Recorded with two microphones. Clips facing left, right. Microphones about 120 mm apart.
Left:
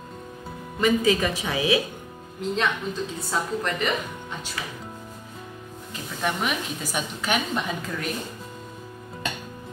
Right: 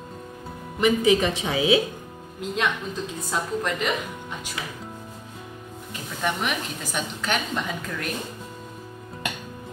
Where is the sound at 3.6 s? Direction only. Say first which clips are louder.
Even; 5° right (ahead or behind).